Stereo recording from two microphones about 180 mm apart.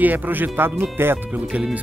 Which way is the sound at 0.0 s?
10° right (ahead or behind).